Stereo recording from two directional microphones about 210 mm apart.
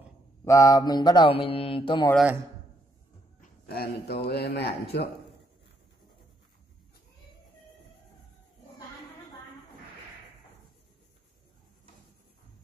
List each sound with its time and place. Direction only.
0.5 s mantra: 15° left (ahead or behind)
3.3 s a man's voice: 45° left (ahead or behind)